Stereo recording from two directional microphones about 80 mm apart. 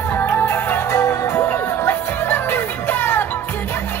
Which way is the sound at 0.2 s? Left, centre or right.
Left.